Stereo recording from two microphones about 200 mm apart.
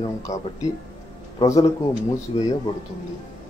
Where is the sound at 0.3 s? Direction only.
15° left (ahead or behind).